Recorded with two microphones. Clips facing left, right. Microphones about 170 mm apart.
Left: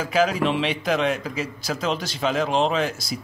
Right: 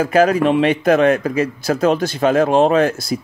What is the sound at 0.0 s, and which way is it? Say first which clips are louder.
A man's voice: right 7 dB; 55° right (ahead or behind).